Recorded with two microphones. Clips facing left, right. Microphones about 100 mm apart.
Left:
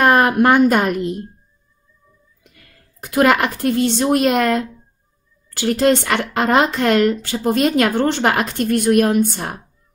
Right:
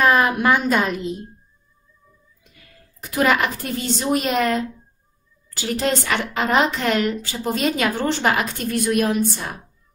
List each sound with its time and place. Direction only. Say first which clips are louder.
0.0 s a woman's voice: left 4 dB; 55° left (ahead or behind)
3.0 s a woman's voice: left 4 dB; 55° left (ahead or behind)